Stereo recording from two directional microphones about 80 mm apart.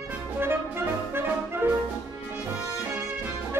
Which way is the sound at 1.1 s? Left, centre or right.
Right.